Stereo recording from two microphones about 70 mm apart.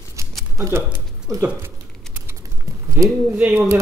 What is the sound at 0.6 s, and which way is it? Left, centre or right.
Speech, right.